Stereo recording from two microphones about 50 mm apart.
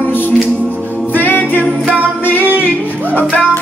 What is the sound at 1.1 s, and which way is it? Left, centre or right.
A capella, left.